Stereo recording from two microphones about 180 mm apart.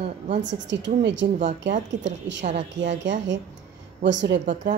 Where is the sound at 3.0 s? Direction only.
80° right.